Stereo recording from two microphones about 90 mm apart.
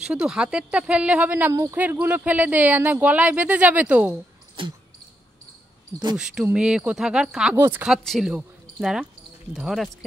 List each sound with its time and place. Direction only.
0.0 s speech: 10° right (ahead or behind)
1.5 s speech: 35° right (ahead or behind)
1.8 s speech: 20° right (ahead or behind)
4.6 s cricket: 75° right (ahead or behind)
6.1 s speech: 10° right (ahead or behind)
7.5 s speech: 25° right (ahead or behind)
8.0 s speech: centre (ahead or behind)
9.6 s speech: centre (ahead or behind)